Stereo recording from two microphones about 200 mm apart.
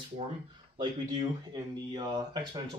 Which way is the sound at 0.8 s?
20° right (ahead or behind).